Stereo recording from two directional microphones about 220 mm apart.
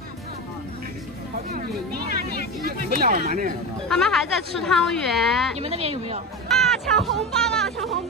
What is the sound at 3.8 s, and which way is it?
Speech, centre (ahead or behind).